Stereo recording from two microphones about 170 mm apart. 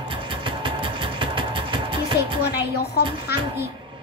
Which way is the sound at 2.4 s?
70° left (ahead or behind).